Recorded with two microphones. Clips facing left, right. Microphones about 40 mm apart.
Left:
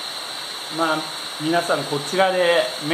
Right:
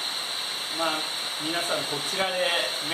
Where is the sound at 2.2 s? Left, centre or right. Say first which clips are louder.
Left 9 dB; left.